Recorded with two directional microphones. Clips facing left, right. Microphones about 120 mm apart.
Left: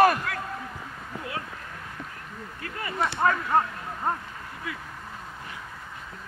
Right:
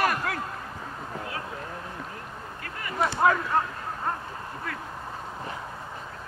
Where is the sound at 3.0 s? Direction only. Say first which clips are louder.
Right 2 dB; 5° right (ahead or behind).